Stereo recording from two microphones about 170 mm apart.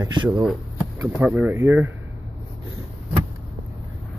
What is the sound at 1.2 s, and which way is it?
Speech, 10° right (ahead or behind).